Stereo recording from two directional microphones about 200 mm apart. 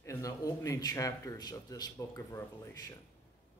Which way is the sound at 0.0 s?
15° left (ahead or behind).